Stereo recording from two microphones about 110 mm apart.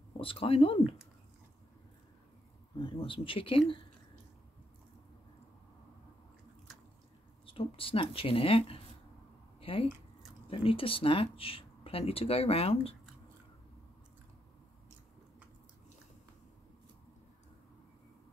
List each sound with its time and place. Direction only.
0.2 s speech: 55° left (ahead or behind)
2.8 s speech: 55° left (ahead or behind)
7.4 s speech: 55° left (ahead or behind)
9.6 s a sound: 55° left (ahead or behind)
10.5 s speech: 55° left (ahead or behind)